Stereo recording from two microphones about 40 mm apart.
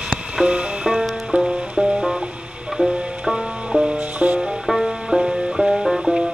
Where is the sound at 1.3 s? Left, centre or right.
Right.